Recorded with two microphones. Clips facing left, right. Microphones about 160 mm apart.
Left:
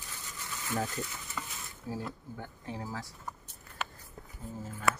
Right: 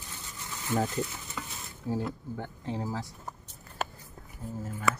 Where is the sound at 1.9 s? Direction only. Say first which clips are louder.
Right 6 dB; 25° right (ahead or behind).